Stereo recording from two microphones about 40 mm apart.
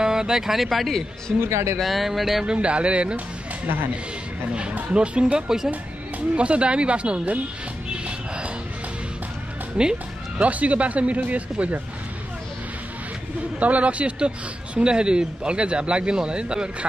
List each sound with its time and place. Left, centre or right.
0.0 s speech: centre
1.3 s speech: centre
2.4 s speech: right
3.6 s speech: right
4.9 s speech: right
9.8 s music: right
10.4 s speech: right
13.6 s speech: right